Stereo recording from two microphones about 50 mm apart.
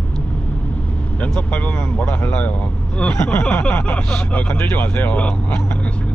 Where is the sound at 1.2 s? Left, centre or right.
Left.